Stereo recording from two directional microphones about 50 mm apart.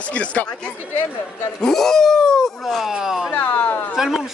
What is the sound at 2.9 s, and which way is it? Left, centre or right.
Speech, centre.